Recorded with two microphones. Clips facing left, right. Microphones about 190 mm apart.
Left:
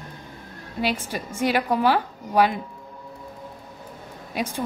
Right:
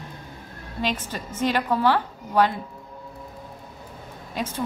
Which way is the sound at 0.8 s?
10° left (ahead or behind).